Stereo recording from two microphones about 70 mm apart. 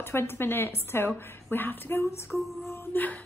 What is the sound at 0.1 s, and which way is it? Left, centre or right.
A woman's voice, left.